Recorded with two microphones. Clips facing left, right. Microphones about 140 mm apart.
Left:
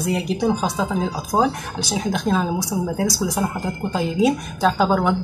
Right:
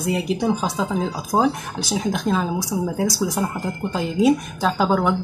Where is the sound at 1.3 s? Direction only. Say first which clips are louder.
Even; 10° right (ahead or behind).